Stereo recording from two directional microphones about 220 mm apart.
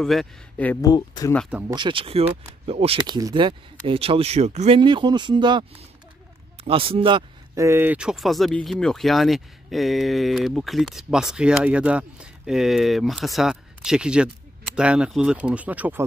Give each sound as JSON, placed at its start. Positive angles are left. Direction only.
{"t": 0.0, "sound": "speech", "side_deg": 0}
{"t": 0.9, "sound": "speech", "side_deg": 20}
{"t": 1.3, "sound": "speech", "side_deg": 0}
{"t": 1.7, "sound": "speech", "side_deg": -20}